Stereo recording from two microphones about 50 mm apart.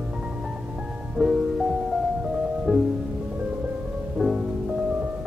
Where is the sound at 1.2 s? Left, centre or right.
Centre.